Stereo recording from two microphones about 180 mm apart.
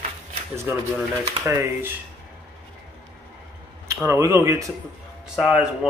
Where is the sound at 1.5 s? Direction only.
15° right (ahead or behind).